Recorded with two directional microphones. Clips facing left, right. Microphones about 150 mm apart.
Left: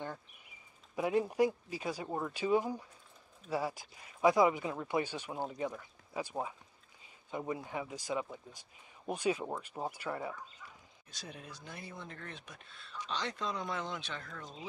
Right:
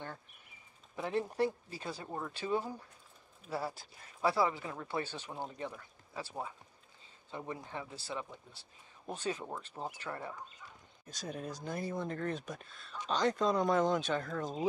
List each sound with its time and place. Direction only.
0.9 s speech: 10° left (ahead or behind)
11.1 s speech: 45° right (ahead or behind)